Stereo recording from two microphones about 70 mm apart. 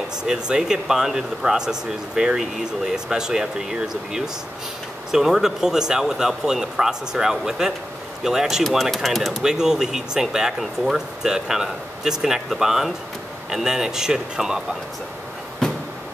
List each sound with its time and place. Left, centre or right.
0.2 s speech: centre